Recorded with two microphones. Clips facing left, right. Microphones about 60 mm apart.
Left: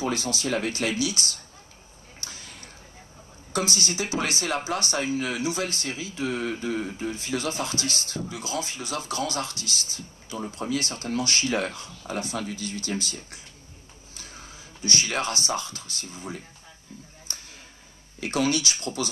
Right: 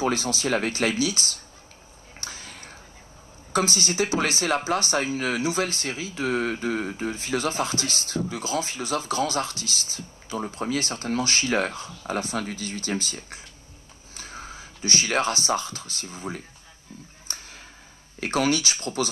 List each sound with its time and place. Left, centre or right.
0.0 s speech: right
2.1 s a sound: right
3.5 s speech: right
12.4 s speech: right
14.1 s speech: right
18.2 s speech: right